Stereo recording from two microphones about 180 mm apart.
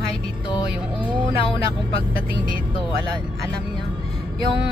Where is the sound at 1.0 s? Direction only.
25° right (ahead or behind).